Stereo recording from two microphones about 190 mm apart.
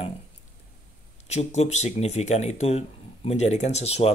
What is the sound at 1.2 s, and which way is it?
Speech, 35° left (ahead or behind).